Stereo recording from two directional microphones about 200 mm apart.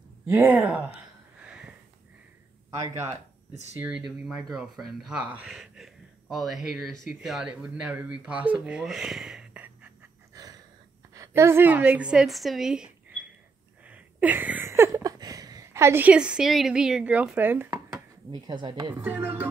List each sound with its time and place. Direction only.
0.3 s music: 10° right (ahead or behind)
1.4 s sniff: 5° right (ahead or behind)
3.7 s speech: 5° right (ahead or behind)
10.3 s a sound: 20° right (ahead or behind)
11.1 s speech: 15° right (ahead or behind)
13.8 s a sound: 10° right (ahead or behind)
18.9 s music: 10° right (ahead or behind)